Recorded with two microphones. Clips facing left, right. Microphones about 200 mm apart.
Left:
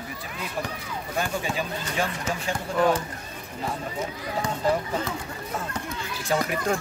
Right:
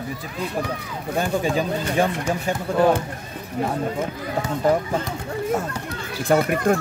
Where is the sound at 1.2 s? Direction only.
40° right (ahead or behind).